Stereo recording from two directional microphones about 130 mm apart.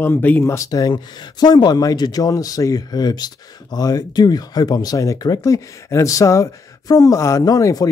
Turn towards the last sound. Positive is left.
turn(degrees=25)  # may be behind; listen again after turning